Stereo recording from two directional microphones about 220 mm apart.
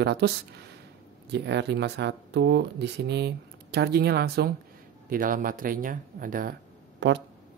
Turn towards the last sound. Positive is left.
turn(degrees=-55)  # may be behind; listen again after turning